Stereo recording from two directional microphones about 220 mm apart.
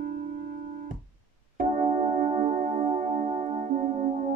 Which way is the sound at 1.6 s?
35° right (ahead or behind).